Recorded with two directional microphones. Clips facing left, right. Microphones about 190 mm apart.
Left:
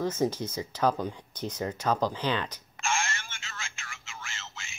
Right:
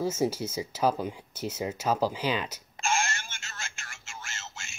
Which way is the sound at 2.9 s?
45° right (ahead or behind).